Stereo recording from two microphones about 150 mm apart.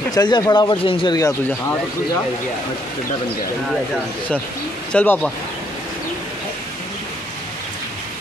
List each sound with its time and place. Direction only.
0.1 s speech: 25° left (ahead or behind)
4.9 s speech: 10° left (ahead or behind)